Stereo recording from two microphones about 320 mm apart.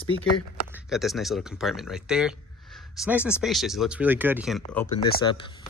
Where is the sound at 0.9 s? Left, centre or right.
Centre.